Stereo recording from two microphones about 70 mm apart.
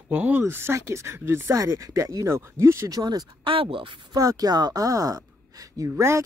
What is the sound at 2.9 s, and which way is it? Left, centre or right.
Speech, right.